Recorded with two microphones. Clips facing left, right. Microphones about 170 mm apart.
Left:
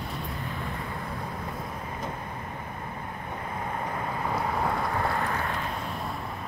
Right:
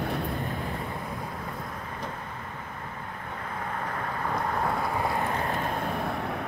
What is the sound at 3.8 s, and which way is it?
Vehicle, 15° left (ahead or behind).